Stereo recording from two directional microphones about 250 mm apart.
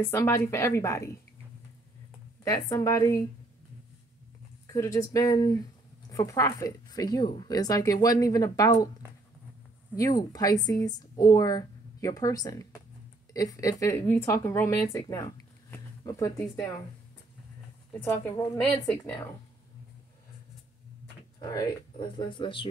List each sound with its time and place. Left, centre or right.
0.0 s speech: centre
2.4 s speech: centre
4.6 s speech: centre
9.9 s speech: centre
18.0 s speech: centre
21.4 s speech: centre